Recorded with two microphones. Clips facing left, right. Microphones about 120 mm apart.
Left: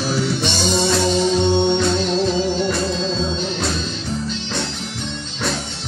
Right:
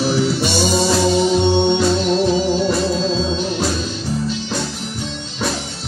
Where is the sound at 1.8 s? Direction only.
5° right (ahead or behind).